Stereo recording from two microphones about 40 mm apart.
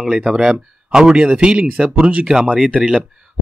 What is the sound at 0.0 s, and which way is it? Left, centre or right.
Speech, centre.